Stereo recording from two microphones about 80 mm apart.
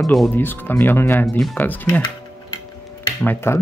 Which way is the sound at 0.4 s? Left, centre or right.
Left.